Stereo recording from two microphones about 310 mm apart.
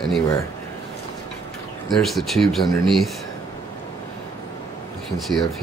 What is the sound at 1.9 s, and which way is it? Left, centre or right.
Speech, centre.